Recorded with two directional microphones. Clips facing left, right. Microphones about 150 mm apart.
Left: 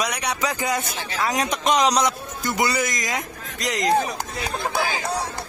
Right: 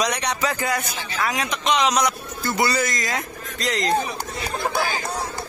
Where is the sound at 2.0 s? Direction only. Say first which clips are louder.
Even; 15° left (ahead or behind).